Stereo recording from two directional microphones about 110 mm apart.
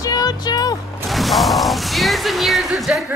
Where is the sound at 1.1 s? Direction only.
Centre (ahead or behind).